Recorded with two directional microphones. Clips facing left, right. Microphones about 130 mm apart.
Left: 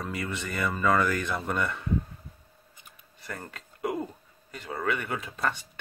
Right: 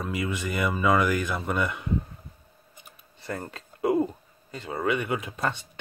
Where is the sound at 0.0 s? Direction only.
5° right (ahead or behind).